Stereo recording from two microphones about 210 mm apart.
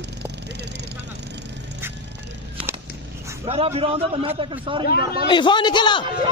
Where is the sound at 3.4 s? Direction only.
30° right (ahead or behind).